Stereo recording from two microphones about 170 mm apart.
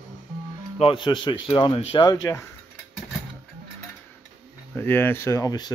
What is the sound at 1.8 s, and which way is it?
Speech, 30° left (ahead or behind).